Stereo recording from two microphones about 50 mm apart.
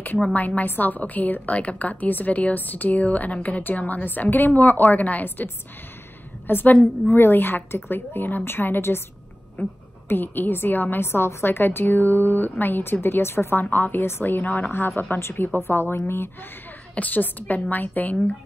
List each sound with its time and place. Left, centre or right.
0.2 s a woman's voice: left
9.6 s a woman's voice: left
11.1 s a woman's voice: left
13.7 s a woman's voice: left
15.1 s speech: left
15.4 s a woman's voice: left
16.9 s a woman's voice: left